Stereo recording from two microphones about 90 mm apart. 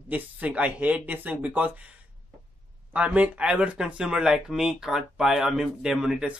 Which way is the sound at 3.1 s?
15° right (ahead or behind).